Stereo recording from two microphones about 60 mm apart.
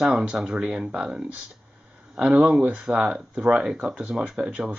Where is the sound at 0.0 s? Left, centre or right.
Centre.